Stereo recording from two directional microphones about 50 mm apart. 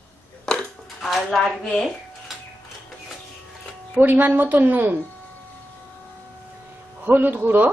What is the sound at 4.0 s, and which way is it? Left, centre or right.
A woman's voice, right.